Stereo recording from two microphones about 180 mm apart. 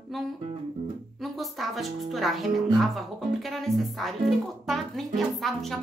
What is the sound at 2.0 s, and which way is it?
Speech, centre (ahead or behind).